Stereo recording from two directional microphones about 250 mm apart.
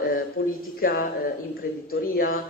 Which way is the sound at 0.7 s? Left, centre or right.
Left.